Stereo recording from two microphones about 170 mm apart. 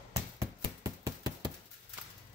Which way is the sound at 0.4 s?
20° right (ahead or behind).